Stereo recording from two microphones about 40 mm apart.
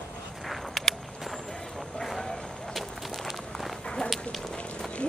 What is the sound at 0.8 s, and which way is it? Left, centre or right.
Walk, centre.